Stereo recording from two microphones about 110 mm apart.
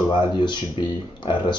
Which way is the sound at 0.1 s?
45° left (ahead or behind).